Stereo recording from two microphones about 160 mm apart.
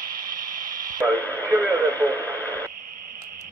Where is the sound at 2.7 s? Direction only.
55° right (ahead or behind).